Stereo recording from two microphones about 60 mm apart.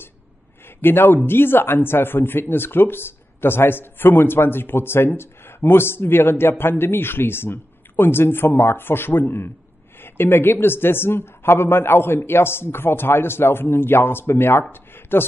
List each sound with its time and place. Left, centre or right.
0.7 s speech: left